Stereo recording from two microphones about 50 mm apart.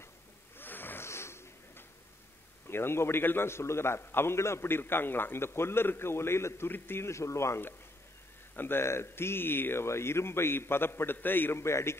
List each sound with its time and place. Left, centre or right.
0.6 s a sound: left
1.0 s a sound: left
2.7 s a man's voice: left
7.1 s speech: left
8.5 s speech: left
9.8 s a man's voice: left
11.6 s a man's voice: left